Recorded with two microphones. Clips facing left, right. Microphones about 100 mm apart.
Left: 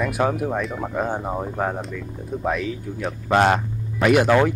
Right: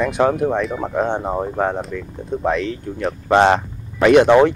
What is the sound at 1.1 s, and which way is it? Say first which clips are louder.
Speech: right 4 dB; 25° right (ahead or behind).